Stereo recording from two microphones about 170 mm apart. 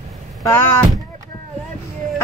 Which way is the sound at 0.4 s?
15° left (ahead or behind).